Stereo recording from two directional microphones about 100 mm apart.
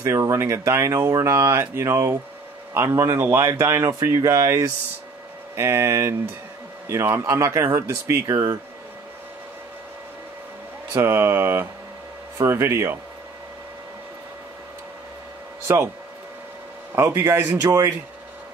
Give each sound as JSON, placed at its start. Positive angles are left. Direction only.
{"t": 0.0, "sound": "speech", "side_deg": -30}
{"t": 10.9, "sound": "speech", "side_deg": -25}
{"t": 15.6, "sound": "speech", "side_deg": -20}
{"t": 16.9, "sound": "speech", "side_deg": -25}